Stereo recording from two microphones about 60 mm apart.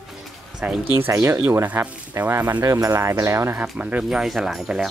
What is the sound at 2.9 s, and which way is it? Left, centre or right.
Speech, right.